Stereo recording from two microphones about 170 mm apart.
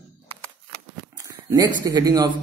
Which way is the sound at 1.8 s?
20° right (ahead or behind).